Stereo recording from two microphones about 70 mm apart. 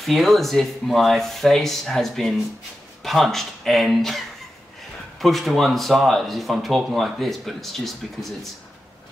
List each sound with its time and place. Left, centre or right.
0.0 s speech: centre